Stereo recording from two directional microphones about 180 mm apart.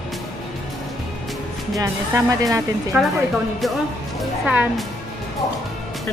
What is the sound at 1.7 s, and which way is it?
Speech, 20° right (ahead or behind).